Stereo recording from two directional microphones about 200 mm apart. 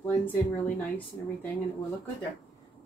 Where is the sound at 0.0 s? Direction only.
10° left (ahead or behind).